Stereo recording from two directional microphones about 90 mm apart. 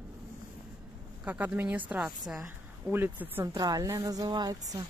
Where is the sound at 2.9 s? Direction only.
25° right (ahead or behind).